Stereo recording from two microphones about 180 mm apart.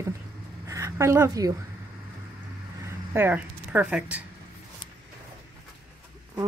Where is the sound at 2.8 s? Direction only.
10° right (ahead or behind).